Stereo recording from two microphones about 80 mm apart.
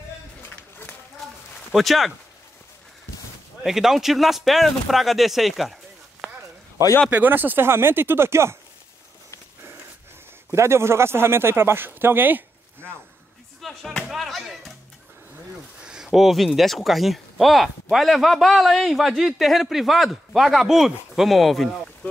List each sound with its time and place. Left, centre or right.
1.7 s speech: centre
3.6 s speech: centre
7.1 s speech: right
10.5 s speech: right
13.6 s speech: centre
15.8 s speech: centre